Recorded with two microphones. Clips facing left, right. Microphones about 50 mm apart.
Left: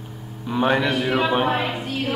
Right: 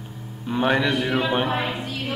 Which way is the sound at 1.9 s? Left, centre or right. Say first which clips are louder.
Left 4 dB; left.